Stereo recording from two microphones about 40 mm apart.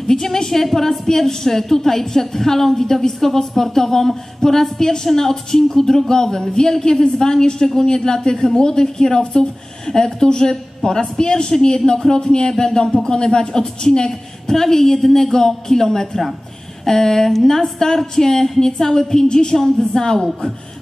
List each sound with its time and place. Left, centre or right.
0.1 s a woman's voice: centre